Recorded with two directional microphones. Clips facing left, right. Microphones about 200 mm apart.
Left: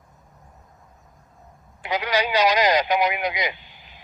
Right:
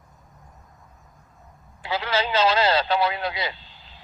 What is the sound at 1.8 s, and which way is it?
A man's voice, 15° left (ahead or behind).